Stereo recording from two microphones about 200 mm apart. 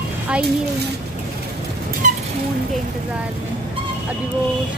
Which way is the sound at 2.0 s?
40° right (ahead or behind).